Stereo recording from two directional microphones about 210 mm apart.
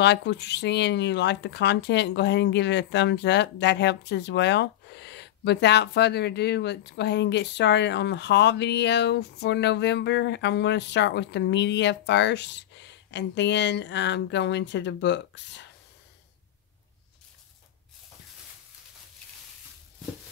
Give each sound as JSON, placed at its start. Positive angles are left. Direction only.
{"t": 0.0, "sound": "speech", "side_deg": 55}